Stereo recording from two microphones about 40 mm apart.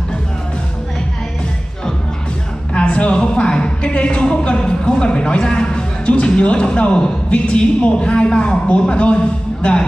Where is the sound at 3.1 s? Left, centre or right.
Left.